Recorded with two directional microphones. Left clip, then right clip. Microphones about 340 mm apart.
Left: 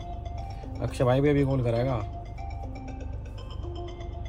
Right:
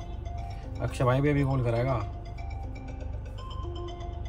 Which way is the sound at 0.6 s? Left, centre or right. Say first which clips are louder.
Left 2 dB; centre.